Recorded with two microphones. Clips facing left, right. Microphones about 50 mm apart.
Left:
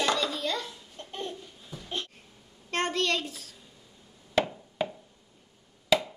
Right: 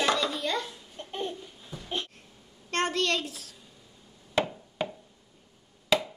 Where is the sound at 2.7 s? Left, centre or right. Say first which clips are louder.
Right 1 dB; centre.